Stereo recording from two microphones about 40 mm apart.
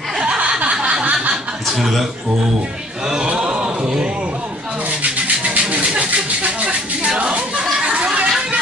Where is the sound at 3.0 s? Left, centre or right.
Right.